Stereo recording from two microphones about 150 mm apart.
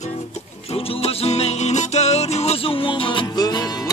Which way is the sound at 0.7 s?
45° left (ahead or behind).